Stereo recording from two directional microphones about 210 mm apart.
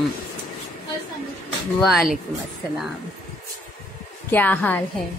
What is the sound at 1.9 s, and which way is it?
Speech, centre (ahead or behind).